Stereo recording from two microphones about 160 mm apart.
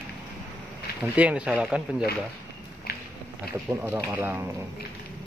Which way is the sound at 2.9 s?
75° left (ahead or behind).